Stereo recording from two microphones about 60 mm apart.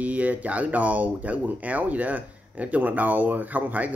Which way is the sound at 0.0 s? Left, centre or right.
Right.